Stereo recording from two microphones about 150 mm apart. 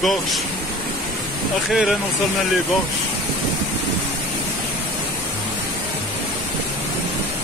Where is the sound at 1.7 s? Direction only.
Centre (ahead or behind).